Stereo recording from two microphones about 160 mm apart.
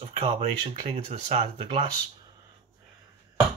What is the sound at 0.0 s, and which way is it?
Speech, 40° right (ahead or behind).